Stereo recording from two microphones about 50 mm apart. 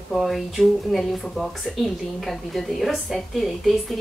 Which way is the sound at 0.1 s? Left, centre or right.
Centre.